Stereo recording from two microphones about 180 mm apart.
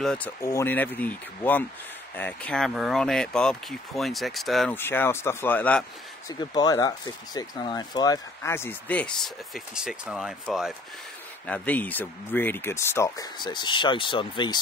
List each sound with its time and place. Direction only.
0.0 s speech: 5° left (ahead or behind)
4.7 s speech: 10° left (ahead or behind)
6.2 s speech: 20° left (ahead or behind); by 10.7 s 5° right (ahead or behind)
11.4 s speech: 10° left (ahead or behind); by 14.6 s 25° left (ahead or behind)